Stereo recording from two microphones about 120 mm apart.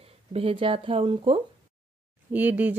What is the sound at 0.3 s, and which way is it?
Speech, 55° right (ahead or behind).